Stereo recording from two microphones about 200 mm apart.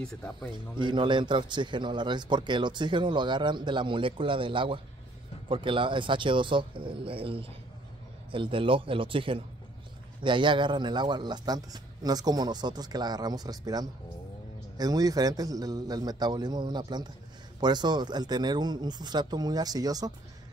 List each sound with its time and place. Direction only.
0.5 s a man's voice: 25° right (ahead or behind)